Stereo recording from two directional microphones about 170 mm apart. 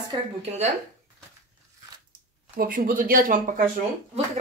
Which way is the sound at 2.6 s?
55° right (ahead or behind).